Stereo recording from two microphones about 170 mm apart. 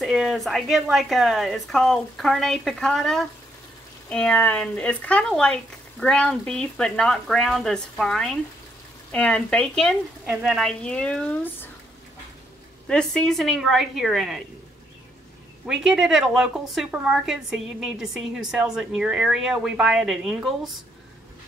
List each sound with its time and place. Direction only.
0.0 s a woman's voice: centre (ahead or behind)
12.8 s a woman's voice: 5° left (ahead or behind)
15.6 s a woman's voice: centre (ahead or behind)